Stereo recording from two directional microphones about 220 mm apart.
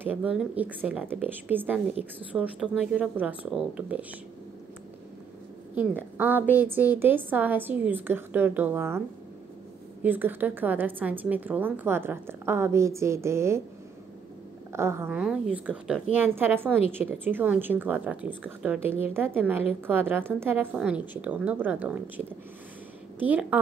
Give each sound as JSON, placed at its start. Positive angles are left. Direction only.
{"t": 0.0, "sound": "a woman's voice", "side_deg": -5}
{"t": 6.1, "sound": "a woman's voice", "side_deg": -10}
{"t": 10.0, "sound": "a woman's voice", "side_deg": -10}
{"t": 14.7, "sound": "a woman's voice", "side_deg": -10}
{"t": 18.9, "sound": "a woman's voice", "side_deg": 25}
{"t": 19.1, "sound": "a woman's voice", "side_deg": -10}
{"t": 23.1, "sound": "a woman's voice", "side_deg": -5}